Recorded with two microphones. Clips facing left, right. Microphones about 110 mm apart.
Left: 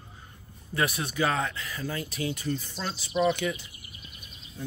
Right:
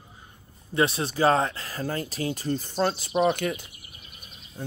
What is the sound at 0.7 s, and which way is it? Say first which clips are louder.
Speech: right 4 dB; 30° right (ahead or behind).